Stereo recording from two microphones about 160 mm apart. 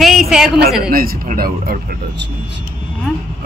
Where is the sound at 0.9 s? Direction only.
65° right (ahead or behind); by 2.6 s 90° right.